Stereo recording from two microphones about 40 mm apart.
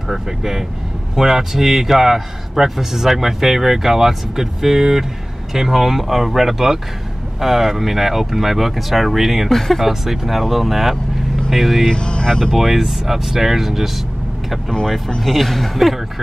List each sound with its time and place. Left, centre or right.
0.1 s a man's voice: centre
11.9 s speech: left
12.5 s a man's voice: centre
14.7 s speech: centre
15.2 s speech: centre